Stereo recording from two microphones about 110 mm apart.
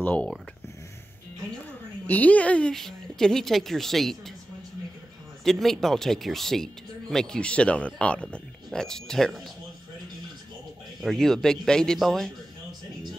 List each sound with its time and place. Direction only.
0.0 s speech: 15° left (ahead or behind)
2.0 s speech: 15° left (ahead or behind)
5.4 s speech: 5° left (ahead or behind)
11.0 s speech: 5° left (ahead or behind)